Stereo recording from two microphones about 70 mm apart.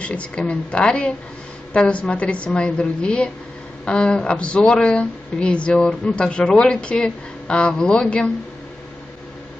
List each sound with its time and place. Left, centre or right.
0.0 s a woman's voice: centre